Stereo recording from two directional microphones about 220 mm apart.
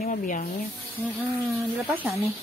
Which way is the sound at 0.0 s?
40° left (ahead or behind).